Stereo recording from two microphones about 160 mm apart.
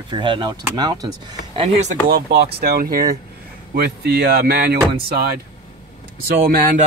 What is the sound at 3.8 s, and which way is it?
Speech, 80° right.